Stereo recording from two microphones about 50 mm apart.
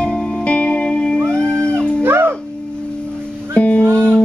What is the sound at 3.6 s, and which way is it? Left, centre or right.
Music, left.